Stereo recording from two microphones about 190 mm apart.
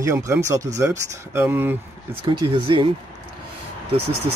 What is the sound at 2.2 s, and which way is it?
Speech, 25° right (ahead or behind).